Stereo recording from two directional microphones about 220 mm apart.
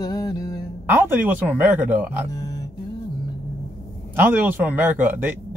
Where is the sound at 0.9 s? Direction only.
10° right (ahead or behind).